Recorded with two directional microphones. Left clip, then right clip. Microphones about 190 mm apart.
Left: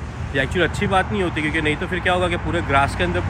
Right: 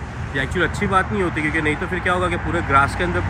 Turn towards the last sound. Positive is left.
turn(degrees=0)  # may be behind; listen again after turning